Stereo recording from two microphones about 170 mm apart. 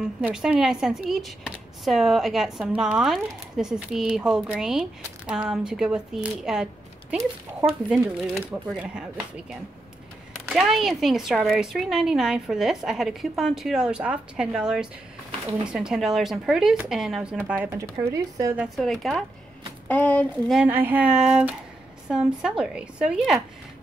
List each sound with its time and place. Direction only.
0.2 s speech: 5° right (ahead or behind)
18.6 s speech: centre (ahead or behind)
20.5 s speech: 10° right (ahead or behind)